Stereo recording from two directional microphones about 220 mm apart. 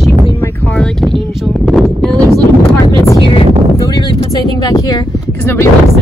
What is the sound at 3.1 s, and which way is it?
Speech, 20° left (ahead or behind).